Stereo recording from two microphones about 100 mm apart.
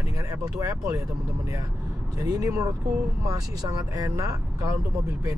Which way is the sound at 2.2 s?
35° right (ahead or behind).